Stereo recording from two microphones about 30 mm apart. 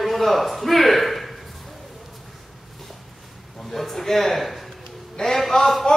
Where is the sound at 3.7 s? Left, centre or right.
Centre.